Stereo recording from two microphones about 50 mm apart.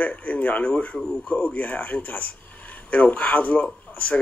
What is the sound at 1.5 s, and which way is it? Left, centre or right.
Speech, left.